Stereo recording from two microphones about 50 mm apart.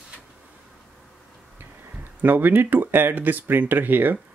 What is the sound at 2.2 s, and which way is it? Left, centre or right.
Speech, right.